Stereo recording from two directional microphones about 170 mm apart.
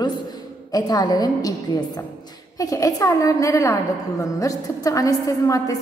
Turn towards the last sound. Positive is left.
turn(degrees=20)  # may be behind; listen again after turning